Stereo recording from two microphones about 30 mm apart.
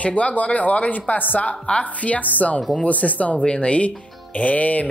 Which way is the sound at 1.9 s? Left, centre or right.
Left.